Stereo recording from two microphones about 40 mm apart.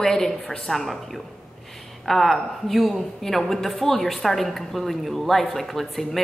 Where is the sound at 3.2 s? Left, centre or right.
Centre.